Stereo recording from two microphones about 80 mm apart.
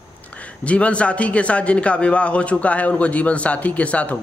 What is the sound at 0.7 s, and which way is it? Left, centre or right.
A man's voice, centre.